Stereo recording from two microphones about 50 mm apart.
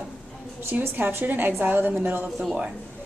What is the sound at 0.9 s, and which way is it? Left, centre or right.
Speech, right.